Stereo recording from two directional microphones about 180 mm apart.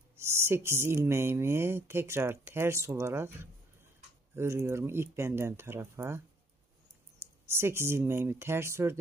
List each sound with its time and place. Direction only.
0.2 s speech: 15° right (ahead or behind)